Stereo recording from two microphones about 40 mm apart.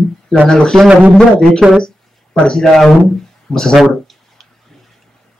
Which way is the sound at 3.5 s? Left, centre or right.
Centre.